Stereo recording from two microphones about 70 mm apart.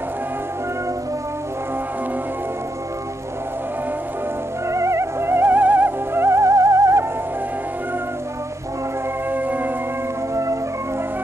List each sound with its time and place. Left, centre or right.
4.6 s music: right
9.3 s music: right
10.3 s music: right